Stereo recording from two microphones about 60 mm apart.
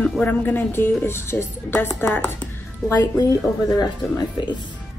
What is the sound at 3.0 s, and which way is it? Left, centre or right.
Speech, left.